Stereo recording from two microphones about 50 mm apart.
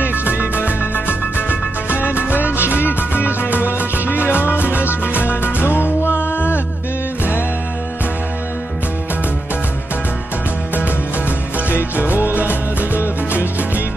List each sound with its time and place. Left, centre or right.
0.0 s music: left
12.4 s music: left